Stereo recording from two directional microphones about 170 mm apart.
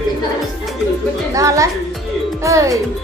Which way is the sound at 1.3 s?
20° right (ahead or behind).